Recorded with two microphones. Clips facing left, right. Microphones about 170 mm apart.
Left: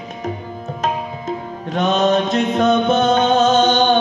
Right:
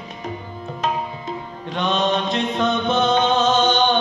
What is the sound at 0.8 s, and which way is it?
Music, 45° left (ahead or behind).